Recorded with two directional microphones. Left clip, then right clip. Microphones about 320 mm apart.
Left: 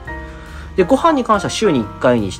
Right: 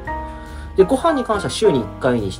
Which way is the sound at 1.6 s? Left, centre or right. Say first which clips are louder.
Right 1 dB; centre.